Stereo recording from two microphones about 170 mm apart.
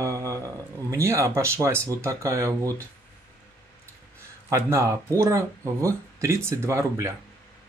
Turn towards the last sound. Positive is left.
turn(degrees=-15)  # may be behind; listen again after turning